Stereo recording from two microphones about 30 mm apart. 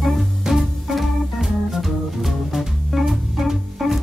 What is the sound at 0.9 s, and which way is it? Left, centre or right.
Organ, centre.